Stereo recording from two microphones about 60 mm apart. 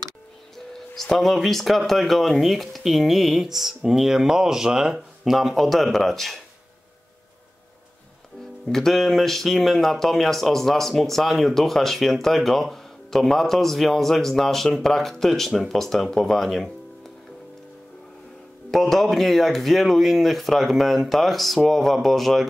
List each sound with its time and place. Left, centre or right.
0.7 s speech: centre
8.6 s speech: centre
18.7 s speech: centre